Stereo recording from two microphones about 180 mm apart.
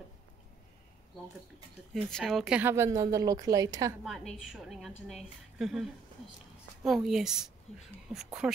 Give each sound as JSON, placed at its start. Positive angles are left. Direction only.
{"t": 2.0, "sound": "a woman's voice", "side_deg": 0}
{"t": 4.0, "sound": "a woman's voice", "side_deg": 0}